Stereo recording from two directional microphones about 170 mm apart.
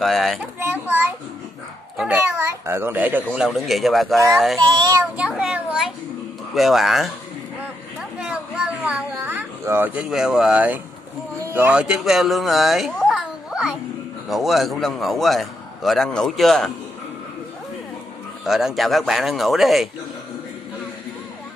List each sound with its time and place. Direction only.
0.0 s a man's voice: centre (ahead or behind)
0.6 s a sound: 10° right (ahead or behind)
2.0 s a child's voice: 10° right (ahead or behind)
3.4 s a man's voice: centre (ahead or behind)
4.7 s a child's voice: 20° right (ahead or behind)
5.1 s a child's voice: 5° right (ahead or behind)
8.0 s a sound: 5° right (ahead or behind)
11.5 s a man's voice: 10° right (ahead or behind)
18.4 s a man's voice: centre (ahead or behind)